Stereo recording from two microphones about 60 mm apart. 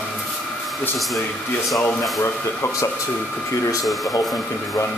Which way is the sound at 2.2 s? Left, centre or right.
Left.